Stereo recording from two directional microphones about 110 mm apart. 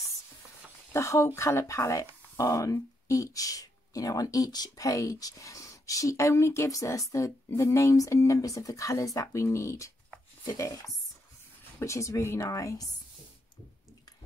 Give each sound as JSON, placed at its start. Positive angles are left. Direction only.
{"t": 0.9, "sound": "speech", "side_deg": 25}
{"t": 11.8, "sound": "speech", "side_deg": 25}